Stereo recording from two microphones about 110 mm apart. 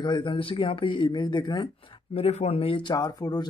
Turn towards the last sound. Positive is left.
turn(degrees=35)  # may be behind; listen again after turning